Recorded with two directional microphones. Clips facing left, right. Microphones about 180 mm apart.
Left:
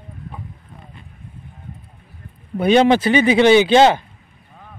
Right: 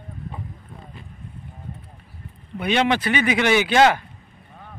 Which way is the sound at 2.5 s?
35° left (ahead or behind).